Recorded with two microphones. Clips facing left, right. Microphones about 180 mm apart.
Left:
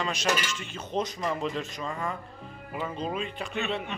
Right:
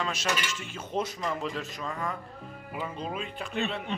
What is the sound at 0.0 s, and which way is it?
A man's voice, centre (ahead or behind).